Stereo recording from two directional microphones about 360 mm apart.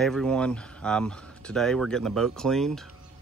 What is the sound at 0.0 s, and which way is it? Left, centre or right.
Speech, centre.